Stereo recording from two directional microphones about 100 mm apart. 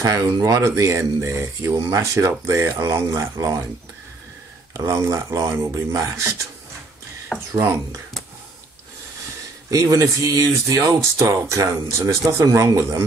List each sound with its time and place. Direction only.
0.0 s speech: 30° right (ahead or behind)
4.7 s speech: 30° right (ahead or behind)
7.3 s speech: 25° right (ahead or behind)
9.7 s speech: 35° right (ahead or behind)